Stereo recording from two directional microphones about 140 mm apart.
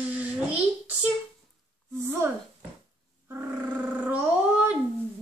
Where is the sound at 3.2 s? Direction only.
15° right (ahead or behind).